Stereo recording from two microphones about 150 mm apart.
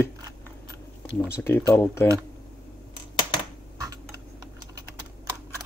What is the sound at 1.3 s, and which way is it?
Speech, 15° left (ahead or behind).